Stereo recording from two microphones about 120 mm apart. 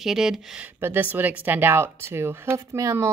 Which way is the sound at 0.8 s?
15° right (ahead or behind).